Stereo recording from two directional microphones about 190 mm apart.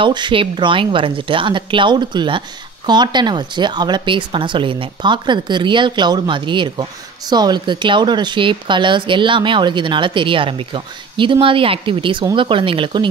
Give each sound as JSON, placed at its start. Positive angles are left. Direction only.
{"t": 0.0, "sound": "speech", "side_deg": -25}